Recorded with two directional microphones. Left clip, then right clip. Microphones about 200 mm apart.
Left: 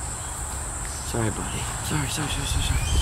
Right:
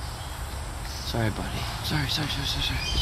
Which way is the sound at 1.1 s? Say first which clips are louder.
Left 2 dB; 25° right (ahead or behind).